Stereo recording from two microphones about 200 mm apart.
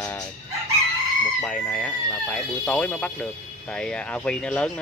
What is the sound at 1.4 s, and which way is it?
Speech, 5° left (ahead or behind).